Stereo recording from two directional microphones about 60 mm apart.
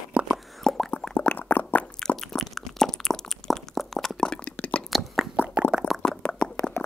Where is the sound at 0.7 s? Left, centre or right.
Centre.